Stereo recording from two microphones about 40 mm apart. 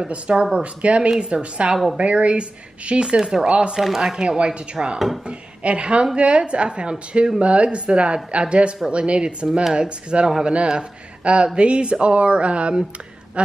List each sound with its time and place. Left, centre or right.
0.1 s speech: right
3.8 s speech: centre
5.6 s a woman's voice: right